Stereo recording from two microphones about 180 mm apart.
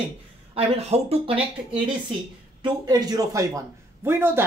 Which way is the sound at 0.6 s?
35° right (ahead or behind).